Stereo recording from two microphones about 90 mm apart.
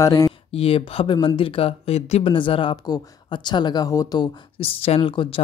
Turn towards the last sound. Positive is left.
turn(degrees=70)  # may be behind; listen again after turning